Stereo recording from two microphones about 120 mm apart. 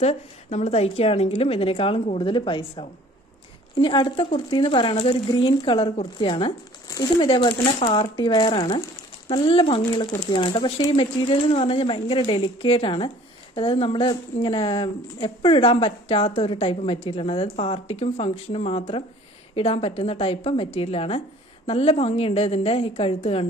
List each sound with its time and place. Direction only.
0.0 s a woman's voice: 65° left (ahead or behind)